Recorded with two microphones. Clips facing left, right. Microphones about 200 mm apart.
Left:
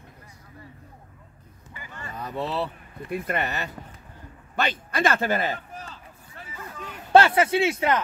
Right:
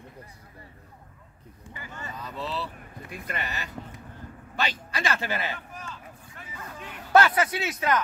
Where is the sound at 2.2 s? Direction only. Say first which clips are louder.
Left 6 dB; 60° left (ahead or behind); by 5.9 s 40° left (ahead or behind).